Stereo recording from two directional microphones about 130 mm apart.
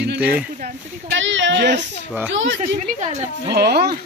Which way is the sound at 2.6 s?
65° right (ahead or behind).